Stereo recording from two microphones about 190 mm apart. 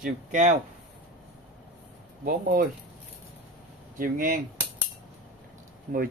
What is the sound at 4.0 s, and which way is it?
Speech, 45° right (ahead or behind).